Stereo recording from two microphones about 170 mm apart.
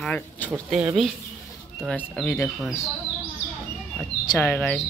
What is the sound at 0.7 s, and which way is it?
Speech, 5° right (ahead or behind).